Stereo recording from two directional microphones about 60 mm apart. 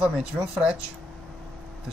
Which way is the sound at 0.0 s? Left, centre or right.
Centre.